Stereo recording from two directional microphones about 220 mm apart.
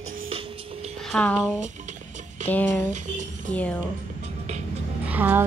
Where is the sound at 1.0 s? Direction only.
5° left (ahead or behind).